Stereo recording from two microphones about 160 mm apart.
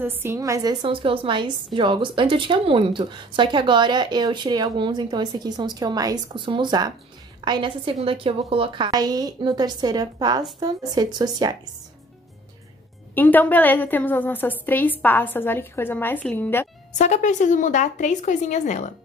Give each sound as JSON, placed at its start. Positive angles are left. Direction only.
{"t": 0.0, "sound": "a woman's voice", "side_deg": -15}
{"t": 13.1, "sound": "a woman's voice", "side_deg": 10}
{"t": 17.0, "sound": "speech", "side_deg": 50}